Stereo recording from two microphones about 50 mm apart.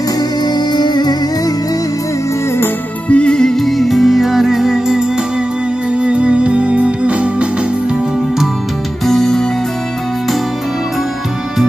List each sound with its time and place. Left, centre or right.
3.1 s music: centre
3.5 s music: centre
5.9 s music: right
9.0 s music: centre